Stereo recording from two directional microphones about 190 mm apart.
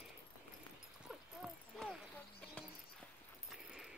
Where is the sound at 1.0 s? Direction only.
Centre (ahead or behind).